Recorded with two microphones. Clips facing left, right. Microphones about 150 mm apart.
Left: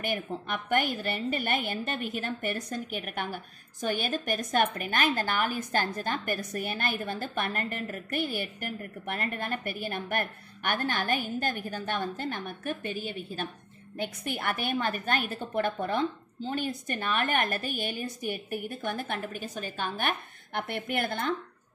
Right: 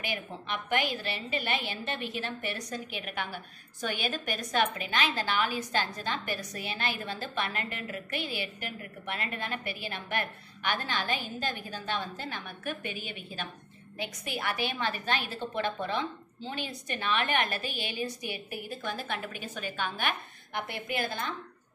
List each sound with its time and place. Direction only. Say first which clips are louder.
0.0 s a woman's voice: left 5 dB; 50° left (ahead or behind)
13.9 s a woman's voice: left 3 dB; 55° left (ahead or behind)